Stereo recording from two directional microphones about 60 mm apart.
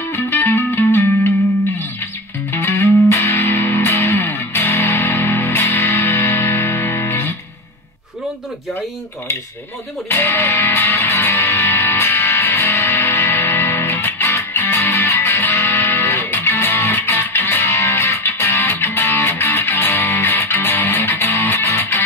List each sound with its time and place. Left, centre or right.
0.1 s music: left
2.5 s music: left
10.0 s speech: left
10.7 s music: left
13.3 s music: left
15.5 s music: left
15.8 s music: left
17.6 s music: left
18.2 s music: left